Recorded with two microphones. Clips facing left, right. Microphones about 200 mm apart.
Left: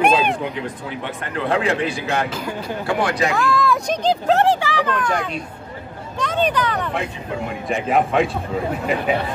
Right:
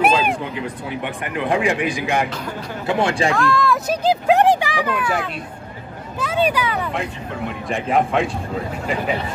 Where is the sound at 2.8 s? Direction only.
25° right (ahead or behind).